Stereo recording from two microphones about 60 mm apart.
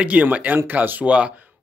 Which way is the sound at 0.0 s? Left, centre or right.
Right.